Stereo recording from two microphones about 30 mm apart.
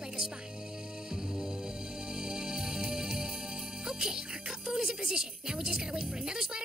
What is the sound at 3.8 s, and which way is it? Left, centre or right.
Speech, centre.